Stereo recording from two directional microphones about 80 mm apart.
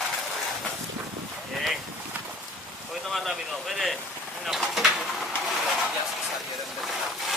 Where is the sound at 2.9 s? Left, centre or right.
Centre.